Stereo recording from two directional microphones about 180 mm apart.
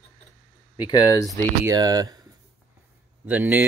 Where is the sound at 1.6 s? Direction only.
20° right (ahead or behind).